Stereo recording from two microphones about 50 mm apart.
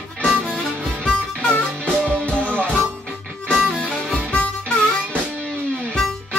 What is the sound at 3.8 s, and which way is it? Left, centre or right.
Music, centre.